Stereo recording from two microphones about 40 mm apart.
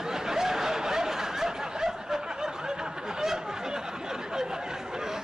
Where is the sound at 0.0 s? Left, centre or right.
Centre.